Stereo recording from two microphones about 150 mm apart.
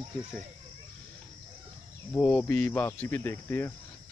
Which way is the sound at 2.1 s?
10° left (ahead or behind).